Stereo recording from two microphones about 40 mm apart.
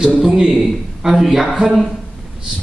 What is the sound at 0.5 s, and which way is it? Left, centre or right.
Speech, centre.